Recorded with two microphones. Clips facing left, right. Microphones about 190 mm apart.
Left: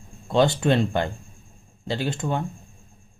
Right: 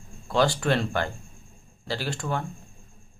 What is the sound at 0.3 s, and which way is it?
Speech, 20° left (ahead or behind).